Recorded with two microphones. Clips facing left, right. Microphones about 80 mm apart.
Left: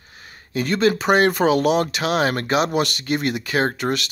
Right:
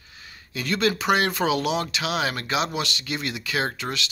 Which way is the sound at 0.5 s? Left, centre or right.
Left.